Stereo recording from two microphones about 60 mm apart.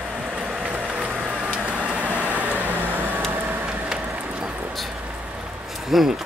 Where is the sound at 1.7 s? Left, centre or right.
Right.